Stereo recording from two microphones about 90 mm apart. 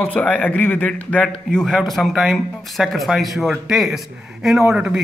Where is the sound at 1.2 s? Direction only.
5° left (ahead or behind).